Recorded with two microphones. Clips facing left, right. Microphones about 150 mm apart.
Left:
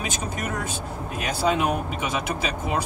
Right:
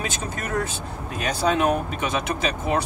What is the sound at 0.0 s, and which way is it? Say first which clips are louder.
Speech: even; 10° left (ahead or behind).